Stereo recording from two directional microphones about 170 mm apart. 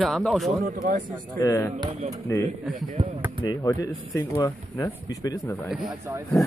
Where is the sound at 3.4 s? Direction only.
20° left (ahead or behind).